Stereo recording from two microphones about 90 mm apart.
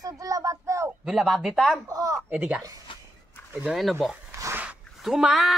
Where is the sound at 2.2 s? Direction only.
15° right (ahead or behind).